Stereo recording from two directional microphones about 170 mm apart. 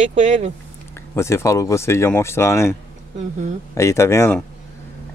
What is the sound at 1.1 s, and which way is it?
Speech, 15° left (ahead or behind).